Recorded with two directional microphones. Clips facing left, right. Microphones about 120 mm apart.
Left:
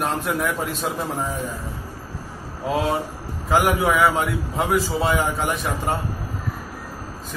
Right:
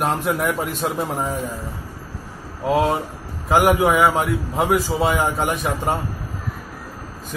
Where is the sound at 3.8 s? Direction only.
20° right (ahead or behind).